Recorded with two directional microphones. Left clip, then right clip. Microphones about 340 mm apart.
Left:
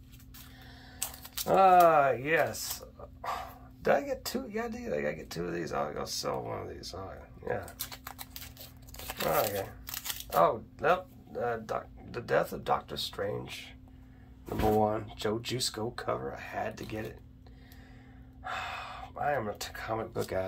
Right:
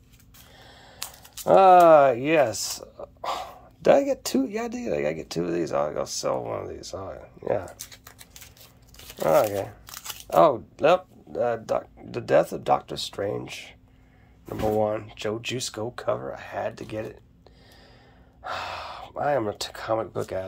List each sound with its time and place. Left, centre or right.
1.4 s speech: centre
7.9 s a sound: centre
9.3 s tearing: centre
10.3 s speech: centre
14.8 s speech: centre
18.5 s speech: centre